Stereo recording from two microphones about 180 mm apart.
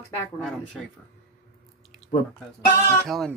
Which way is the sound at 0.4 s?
Centre (ahead or behind).